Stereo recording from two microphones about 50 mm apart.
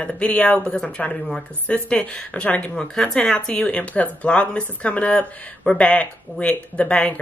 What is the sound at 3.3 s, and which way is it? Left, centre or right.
Speech, left.